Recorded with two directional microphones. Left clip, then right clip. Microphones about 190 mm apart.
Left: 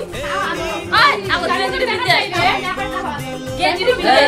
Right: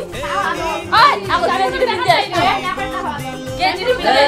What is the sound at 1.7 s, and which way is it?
Music, 30° right (ahead or behind).